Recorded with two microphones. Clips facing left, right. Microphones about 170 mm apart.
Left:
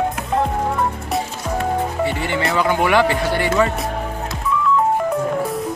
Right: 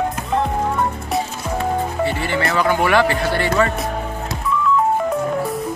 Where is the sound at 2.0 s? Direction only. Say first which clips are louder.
Even; 20° left (ahead or behind).